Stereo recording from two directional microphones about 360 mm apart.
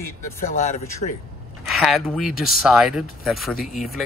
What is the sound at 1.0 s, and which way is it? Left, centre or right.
Speech, left.